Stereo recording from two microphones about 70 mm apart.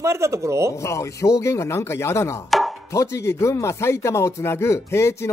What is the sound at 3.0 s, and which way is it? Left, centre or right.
Speech, left.